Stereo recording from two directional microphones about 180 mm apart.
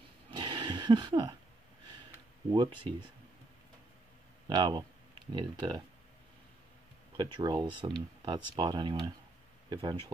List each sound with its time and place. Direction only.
0.3 s a sound: 25° right (ahead or behind)
2.5 s speech: 25° right (ahead or behind)
4.5 s speech: 25° right (ahead or behind)
7.2 s speech: 25° right (ahead or behind)